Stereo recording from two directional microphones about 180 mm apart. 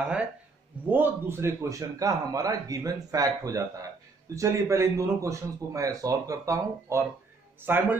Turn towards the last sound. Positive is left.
turn(degrees=-10)  # may be behind; listen again after turning